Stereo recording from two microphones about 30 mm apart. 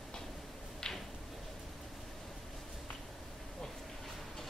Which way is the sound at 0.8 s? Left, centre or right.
Left.